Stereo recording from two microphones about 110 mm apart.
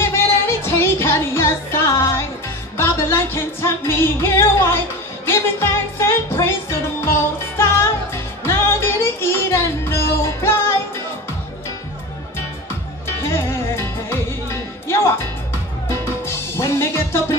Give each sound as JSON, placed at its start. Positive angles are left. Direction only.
{"t": 0.0, "sound": "music", "side_deg": 25}
{"t": 13.2, "sound": "music", "side_deg": 25}
{"t": 15.9, "sound": "music", "side_deg": 25}